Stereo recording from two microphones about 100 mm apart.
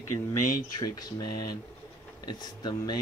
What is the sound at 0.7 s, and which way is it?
Speech, 40° left (ahead or behind).